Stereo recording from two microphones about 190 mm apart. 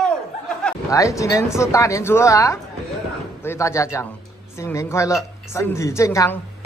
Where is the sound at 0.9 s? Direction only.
15° left (ahead or behind).